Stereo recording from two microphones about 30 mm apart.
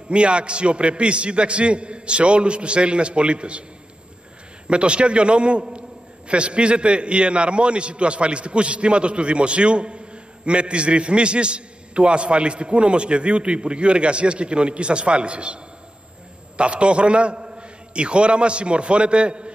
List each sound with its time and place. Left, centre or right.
0.1 s a man's voice: right
4.6 s a man's voice: right